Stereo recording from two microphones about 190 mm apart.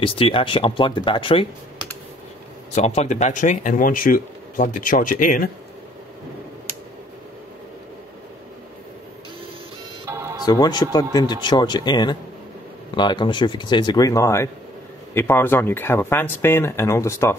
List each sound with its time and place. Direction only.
0.0 s speech: 30° left (ahead or behind)
2.7 s speech: 35° left (ahead or behind)
10.0 s music: 15° right (ahead or behind)
10.4 s speech: 20° left (ahead or behind)